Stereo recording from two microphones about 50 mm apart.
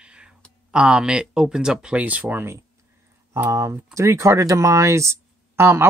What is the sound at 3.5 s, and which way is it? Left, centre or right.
Speech, right.